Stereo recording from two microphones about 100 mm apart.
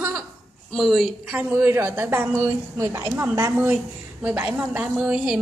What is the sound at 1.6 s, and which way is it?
Speech, 20° right (ahead or behind).